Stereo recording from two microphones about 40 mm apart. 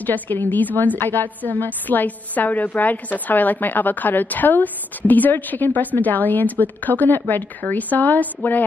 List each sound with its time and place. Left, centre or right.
0.0 s a woman's voice: left